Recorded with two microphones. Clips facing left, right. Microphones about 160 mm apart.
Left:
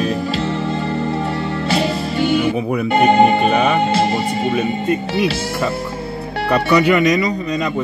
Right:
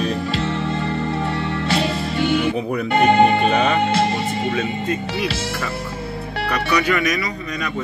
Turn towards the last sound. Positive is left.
turn(degrees=20)  # may be behind; listen again after turning